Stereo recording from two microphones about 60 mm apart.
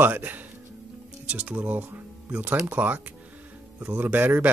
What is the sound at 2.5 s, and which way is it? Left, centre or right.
Speech, right.